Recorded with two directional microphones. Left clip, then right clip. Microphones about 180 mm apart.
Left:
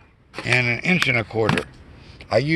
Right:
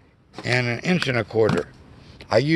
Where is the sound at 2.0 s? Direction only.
15° right (ahead or behind).